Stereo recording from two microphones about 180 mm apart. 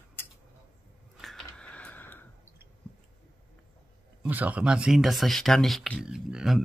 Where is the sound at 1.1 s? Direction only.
Centre (ahead or behind).